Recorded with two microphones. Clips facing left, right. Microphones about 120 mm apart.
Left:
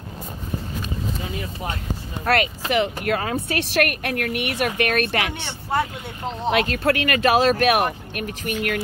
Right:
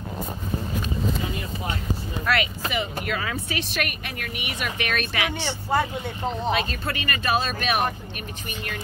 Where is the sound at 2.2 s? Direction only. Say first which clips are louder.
Left 4 dB; 45° left (ahead or behind).